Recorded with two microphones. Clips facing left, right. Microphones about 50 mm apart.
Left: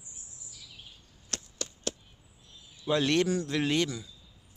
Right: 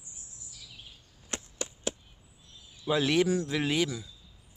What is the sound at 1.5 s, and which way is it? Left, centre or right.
Chop, centre.